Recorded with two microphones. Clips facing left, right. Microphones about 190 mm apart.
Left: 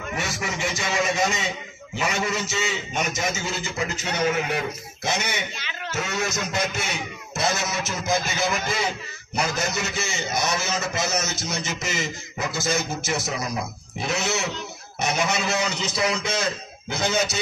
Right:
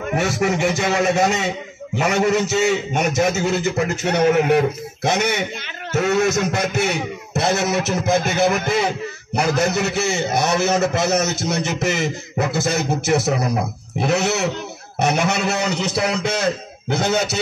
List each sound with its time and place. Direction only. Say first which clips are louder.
0.1 s a man's voice: right 11 dB; 60° right (ahead or behind)